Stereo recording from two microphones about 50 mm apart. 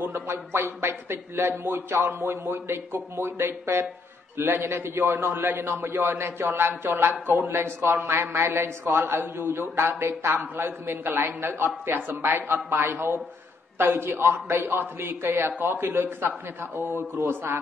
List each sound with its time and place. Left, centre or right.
0.3 s a man's voice: right
5.6 s a man's voice: right